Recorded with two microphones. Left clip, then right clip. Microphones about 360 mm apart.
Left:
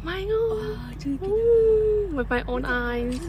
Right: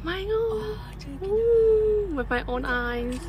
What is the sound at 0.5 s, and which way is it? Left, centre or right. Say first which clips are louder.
Speech: left 1 dB; centre.